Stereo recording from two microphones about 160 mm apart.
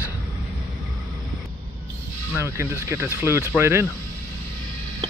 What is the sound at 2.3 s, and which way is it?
Speech, 15° right (ahead or behind).